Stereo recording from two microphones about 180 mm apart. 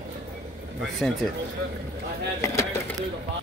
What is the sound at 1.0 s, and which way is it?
Speech, centre (ahead or behind).